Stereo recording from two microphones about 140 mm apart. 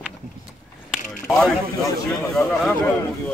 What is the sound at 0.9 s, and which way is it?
Mechanisms, centre (ahead or behind).